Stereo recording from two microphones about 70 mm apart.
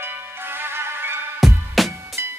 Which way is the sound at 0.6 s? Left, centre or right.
Right.